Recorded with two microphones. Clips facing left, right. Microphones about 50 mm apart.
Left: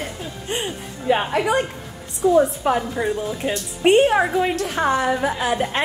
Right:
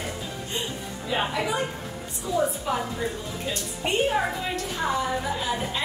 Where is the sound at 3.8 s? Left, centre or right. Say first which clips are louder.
Left 9 dB; left.